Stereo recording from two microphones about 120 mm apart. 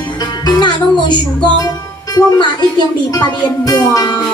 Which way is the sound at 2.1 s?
40° left (ahead or behind).